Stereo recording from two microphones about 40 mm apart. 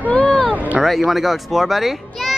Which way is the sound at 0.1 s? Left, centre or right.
Centre.